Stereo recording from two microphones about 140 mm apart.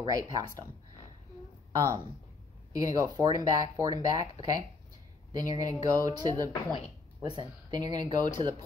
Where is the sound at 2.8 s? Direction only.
25° right (ahead or behind).